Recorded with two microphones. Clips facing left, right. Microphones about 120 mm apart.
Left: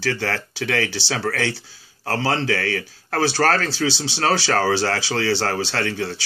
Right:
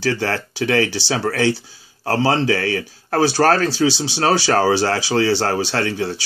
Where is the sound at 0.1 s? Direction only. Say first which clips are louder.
Right 3 dB; 20° right (ahead or behind).